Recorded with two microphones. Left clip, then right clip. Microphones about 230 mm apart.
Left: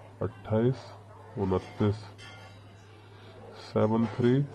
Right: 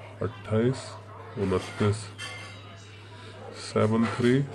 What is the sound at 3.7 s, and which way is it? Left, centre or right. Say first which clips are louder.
Speech: right 2 dB; centre.